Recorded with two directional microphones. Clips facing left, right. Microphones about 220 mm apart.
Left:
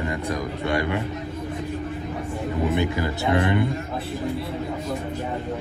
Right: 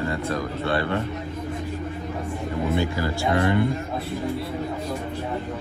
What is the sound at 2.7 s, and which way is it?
Speech, 20° left (ahead or behind).